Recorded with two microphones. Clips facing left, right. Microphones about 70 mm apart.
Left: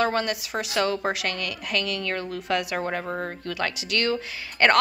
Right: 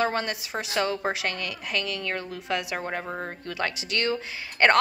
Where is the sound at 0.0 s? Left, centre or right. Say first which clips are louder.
Left 2 dB; right.